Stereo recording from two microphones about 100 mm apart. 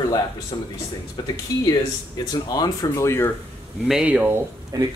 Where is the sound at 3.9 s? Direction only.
10° right (ahead or behind).